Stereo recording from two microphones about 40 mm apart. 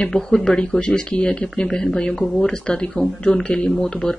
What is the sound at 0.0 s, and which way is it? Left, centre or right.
A woman's voice, centre.